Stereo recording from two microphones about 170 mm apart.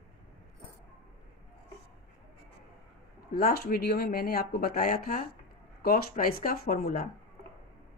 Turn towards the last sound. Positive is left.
turn(degrees=60)  # may be behind; listen again after turning